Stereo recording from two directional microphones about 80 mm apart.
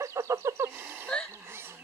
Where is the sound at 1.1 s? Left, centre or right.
Centre.